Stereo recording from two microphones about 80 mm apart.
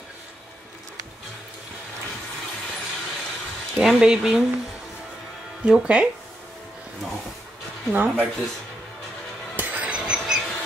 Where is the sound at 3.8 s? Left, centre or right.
Centre.